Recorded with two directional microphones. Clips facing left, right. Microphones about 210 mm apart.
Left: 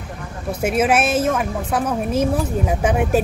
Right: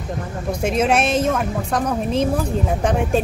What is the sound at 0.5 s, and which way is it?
A woman's voice, 5° left (ahead or behind).